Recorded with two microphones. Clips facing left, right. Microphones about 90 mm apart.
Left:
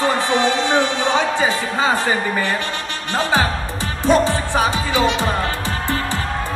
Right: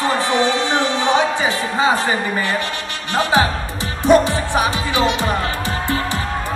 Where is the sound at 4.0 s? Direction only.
15° right (ahead or behind).